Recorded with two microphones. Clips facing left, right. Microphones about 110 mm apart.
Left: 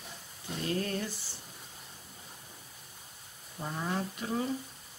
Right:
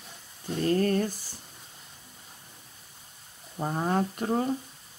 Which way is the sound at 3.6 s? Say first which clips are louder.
Right 7 dB; 45° right (ahead or behind).